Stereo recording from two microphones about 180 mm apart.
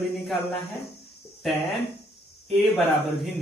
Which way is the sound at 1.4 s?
Centre (ahead or behind).